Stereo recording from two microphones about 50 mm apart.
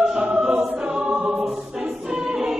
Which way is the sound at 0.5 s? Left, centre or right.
Right.